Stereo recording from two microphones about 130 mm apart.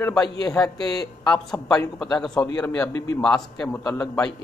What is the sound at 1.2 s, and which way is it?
A man's voice, 5° left (ahead or behind).